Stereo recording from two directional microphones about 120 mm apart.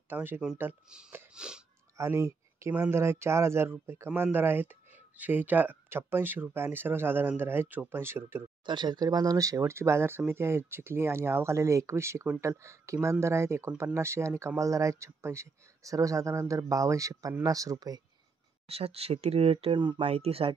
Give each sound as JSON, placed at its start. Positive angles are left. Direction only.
{"t": 0.1, "sound": "speech", "side_deg": -15}
{"t": 1.3, "sound": "wheeze", "side_deg": -5}
{"t": 2.0, "sound": "a sound", "side_deg": -25}
{"t": 2.9, "sound": "speech", "side_deg": -20}
{"t": 8.6, "sound": "speech", "side_deg": -40}
{"t": 18.7, "sound": "speech", "side_deg": -55}
{"t": 20.0, "sound": "speech", "side_deg": -55}